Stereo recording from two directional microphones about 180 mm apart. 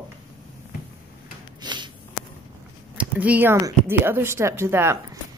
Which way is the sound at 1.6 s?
25° right (ahead or behind).